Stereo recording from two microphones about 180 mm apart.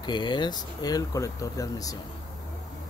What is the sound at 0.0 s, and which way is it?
Speech, 25° left (ahead or behind).